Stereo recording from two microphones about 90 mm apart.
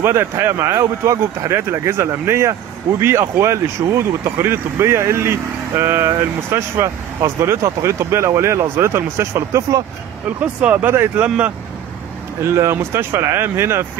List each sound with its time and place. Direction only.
0.0 s speech: 30° right (ahead or behind)
10.4 s speech: 15° right (ahead or behind)
12.4 s speech: 30° right (ahead or behind)